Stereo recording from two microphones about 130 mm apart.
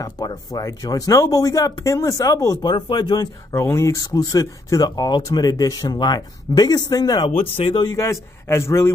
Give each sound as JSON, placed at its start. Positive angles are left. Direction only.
{"t": 0.0, "sound": "speech", "side_deg": 30}
{"t": 3.5, "sound": "speech", "side_deg": 20}
{"t": 7.2, "sound": "speech", "side_deg": 45}
{"t": 7.8, "sound": "speech", "side_deg": 25}